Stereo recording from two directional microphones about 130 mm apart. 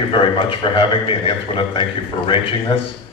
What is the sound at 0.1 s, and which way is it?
A man's voice, 45° left (ahead or behind).